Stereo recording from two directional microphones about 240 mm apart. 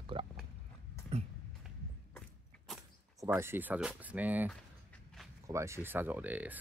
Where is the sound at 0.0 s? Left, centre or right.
Right.